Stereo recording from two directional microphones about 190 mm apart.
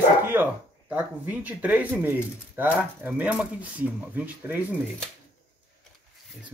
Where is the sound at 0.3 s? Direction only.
10° right (ahead or behind).